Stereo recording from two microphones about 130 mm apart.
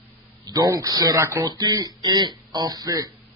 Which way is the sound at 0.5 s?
25° right (ahead or behind).